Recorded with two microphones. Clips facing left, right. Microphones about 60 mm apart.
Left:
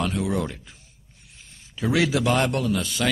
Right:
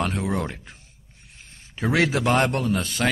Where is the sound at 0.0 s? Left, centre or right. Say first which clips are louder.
Even; right.